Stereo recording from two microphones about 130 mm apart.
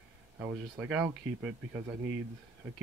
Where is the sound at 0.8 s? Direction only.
10° right (ahead or behind).